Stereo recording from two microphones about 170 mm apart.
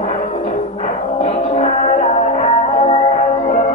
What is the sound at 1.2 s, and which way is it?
Music, 40° left (ahead or behind).